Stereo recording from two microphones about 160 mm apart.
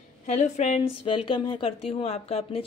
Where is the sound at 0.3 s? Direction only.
45° left (ahead or behind).